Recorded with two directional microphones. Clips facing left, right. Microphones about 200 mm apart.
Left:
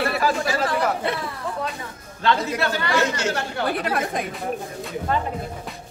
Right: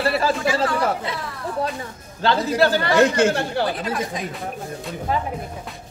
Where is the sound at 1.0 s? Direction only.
60° left (ahead or behind).